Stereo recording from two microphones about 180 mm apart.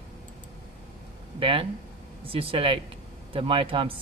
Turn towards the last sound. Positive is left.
turn(degrees=-30)  # may be behind; listen again after turning